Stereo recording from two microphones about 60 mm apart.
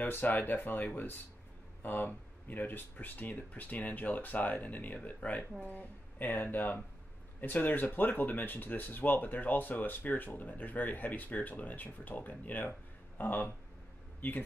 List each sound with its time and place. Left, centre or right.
0.0 s speech: left